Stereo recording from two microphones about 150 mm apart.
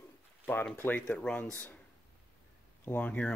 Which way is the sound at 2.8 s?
10° left (ahead or behind).